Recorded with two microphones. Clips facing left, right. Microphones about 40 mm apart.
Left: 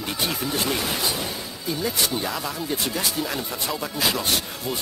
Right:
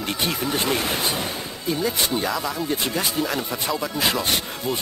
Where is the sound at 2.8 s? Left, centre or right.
Right.